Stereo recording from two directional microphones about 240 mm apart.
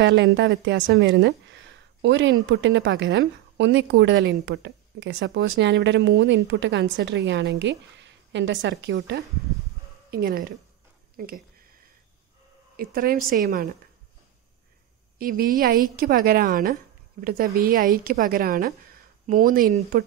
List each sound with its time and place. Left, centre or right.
0.0 s a woman's voice: right
12.7 s a woman's voice: right
15.1 s a woman's voice: right